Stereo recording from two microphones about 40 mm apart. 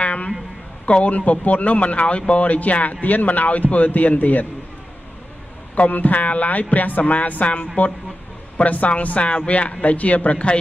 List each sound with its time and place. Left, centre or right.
0.0 s a sound: left
0.8 s speech: left
5.8 s speech: left